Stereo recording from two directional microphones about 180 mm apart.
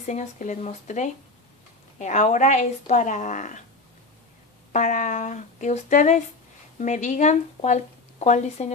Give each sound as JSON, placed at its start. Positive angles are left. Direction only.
{"t": 0.0, "sound": "speech", "side_deg": 40}
{"t": 4.7, "sound": "speech", "side_deg": 45}